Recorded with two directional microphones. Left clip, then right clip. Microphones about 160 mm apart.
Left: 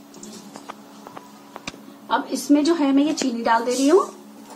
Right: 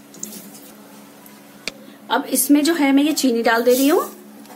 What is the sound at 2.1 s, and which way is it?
A woman's voice, 60° right (ahead or behind).